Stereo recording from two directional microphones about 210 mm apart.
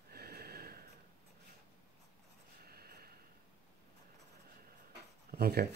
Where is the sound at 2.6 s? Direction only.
45° right (ahead or behind).